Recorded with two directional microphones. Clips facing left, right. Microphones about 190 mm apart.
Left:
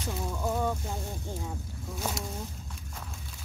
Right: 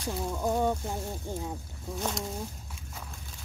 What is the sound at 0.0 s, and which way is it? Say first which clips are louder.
Speech: right 2 dB; 10° right (ahead or behind).